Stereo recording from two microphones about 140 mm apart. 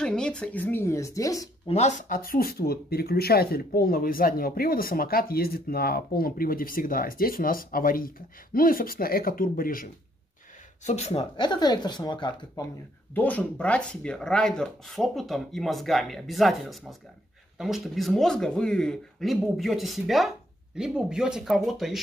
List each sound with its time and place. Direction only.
0.0 s a woman's voice: 5° left (ahead or behind); by 1.5 s 25° left (ahead or behind)
1.7 s speech: 55° left (ahead or behind); by 9.8 s 90° left
10.9 s speech: 50° left (ahead or behind)
11.3 s speech: 30° left (ahead or behind)
13.1 s speech: 10° left (ahead or behind)